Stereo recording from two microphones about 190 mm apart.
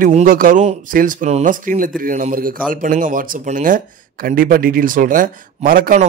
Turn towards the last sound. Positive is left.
turn(degrees=-45)  # may be behind; listen again after turning